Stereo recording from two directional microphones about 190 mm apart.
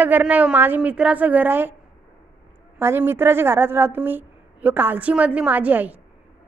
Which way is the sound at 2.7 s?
10° right (ahead or behind).